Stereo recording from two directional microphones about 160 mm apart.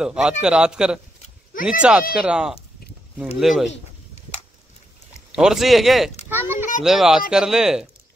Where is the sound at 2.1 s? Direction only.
5° right (ahead or behind).